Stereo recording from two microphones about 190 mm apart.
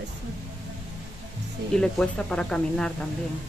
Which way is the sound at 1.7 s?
5° left (ahead or behind).